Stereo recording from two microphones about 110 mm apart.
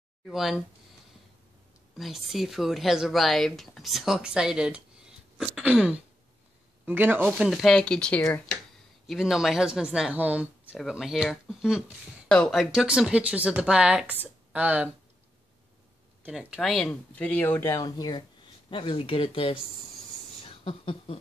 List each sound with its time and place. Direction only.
0.3 s speech: centre (ahead or behind)
2.0 s speech: centre (ahead or behind); by 7.2 s 15° right (ahead or behind)
7.3 s speech: centre (ahead or behind)
10.8 s speech: centre (ahead or behind)
16.3 s speech: 5° right (ahead or behind); by 17.7 s 15° left (ahead or behind)
17.7 s speech: 35° left (ahead or behind)
18.7 s speech: 50° left (ahead or behind)
20.4 s a sound: 60° left (ahead or behind)